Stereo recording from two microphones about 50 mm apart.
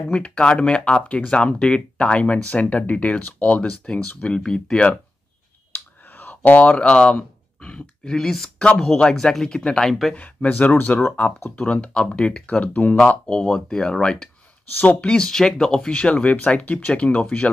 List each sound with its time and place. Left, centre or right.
0.1 s speech: left
5.7 s a sound: left; by 7.2 s centre
7.6 s speech: centre
10.1 s speech: left
11.7 s speech: centre
15.2 s speech: centre